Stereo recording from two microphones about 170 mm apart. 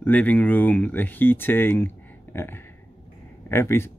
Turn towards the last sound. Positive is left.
turn(degrees=15)  # may be behind; listen again after turning